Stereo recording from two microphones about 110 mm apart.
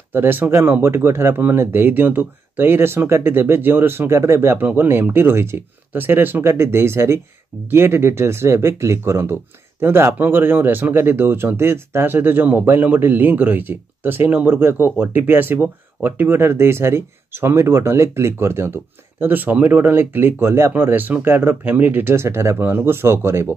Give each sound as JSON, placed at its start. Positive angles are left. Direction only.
{"t": 0.1, "sound": "speech", "side_deg": -20}